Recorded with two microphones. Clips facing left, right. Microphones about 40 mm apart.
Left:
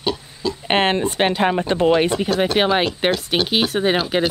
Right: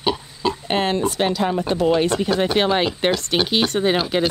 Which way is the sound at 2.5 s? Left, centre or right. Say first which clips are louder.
Left 1 dB; centre.